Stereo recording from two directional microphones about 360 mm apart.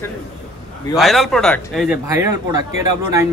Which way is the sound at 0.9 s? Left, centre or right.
Centre.